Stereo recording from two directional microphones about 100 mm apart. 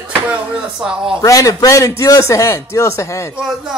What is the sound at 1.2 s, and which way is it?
A man's voice, 35° left (ahead or behind).